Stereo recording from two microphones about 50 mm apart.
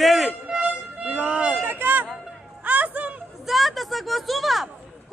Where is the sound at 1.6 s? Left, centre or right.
Right.